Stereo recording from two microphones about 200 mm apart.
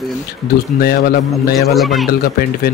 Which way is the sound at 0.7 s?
50° left (ahead or behind).